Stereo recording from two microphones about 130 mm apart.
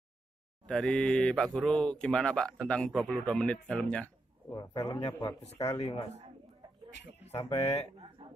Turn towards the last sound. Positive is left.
turn(degrees=50)  # may be behind; listen again after turning